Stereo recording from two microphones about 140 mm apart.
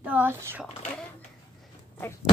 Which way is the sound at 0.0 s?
10° right (ahead or behind).